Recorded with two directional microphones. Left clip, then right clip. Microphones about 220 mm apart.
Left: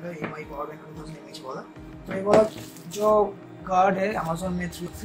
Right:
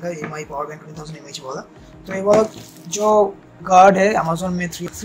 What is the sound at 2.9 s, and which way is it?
Speech, 40° right (ahead or behind).